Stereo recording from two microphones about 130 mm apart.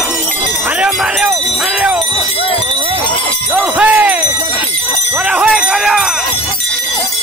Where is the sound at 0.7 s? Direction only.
10° right (ahead or behind).